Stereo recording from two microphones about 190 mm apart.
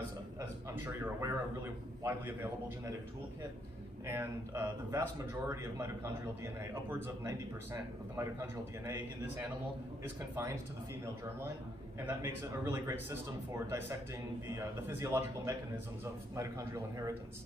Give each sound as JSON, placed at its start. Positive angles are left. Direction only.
{"t": 0.4, "sound": "speech", "side_deg": -15}
{"t": 4.0, "sound": "speech", "side_deg": -15}
{"t": 12.0, "sound": "speech", "side_deg": -10}
{"t": 14.5, "sound": "speech", "side_deg": -15}